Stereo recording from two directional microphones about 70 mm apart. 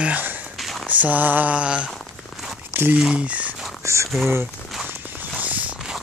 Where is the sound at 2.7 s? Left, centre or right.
Right.